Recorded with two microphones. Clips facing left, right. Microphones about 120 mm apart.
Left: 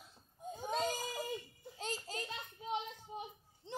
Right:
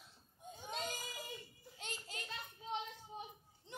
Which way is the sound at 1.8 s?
35° left (ahead or behind).